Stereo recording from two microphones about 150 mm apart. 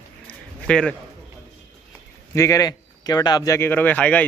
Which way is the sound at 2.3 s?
20° left (ahead or behind).